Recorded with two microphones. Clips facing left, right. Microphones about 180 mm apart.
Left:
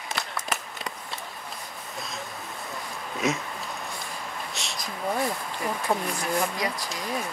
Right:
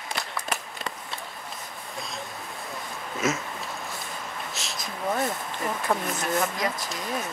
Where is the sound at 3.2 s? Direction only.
Centre (ahead or behind).